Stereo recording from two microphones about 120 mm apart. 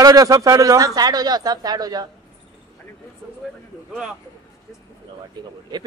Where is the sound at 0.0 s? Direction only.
30° right (ahead or behind).